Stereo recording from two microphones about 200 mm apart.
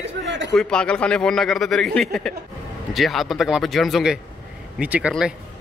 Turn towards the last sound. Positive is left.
turn(degrees=-5)  # may be behind; listen again after turning